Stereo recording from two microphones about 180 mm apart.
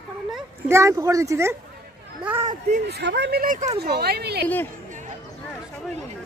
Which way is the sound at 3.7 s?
60° right (ahead or behind).